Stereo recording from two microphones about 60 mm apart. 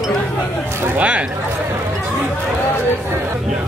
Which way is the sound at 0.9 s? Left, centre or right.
Right.